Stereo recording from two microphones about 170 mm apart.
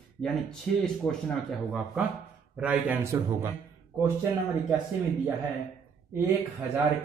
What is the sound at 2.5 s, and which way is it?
A man's voice, 10° right (ahead or behind).